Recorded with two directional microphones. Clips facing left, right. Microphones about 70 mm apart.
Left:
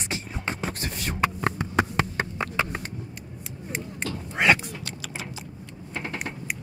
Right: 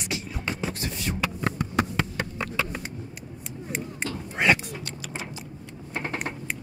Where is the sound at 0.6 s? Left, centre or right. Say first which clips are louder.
Even; left.